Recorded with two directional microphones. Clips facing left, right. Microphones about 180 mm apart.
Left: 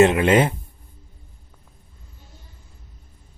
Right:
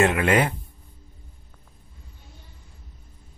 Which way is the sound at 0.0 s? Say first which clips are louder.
Left 5 dB; 20° left (ahead or behind).